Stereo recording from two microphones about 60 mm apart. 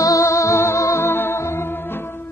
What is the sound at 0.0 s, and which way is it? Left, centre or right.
Music, left.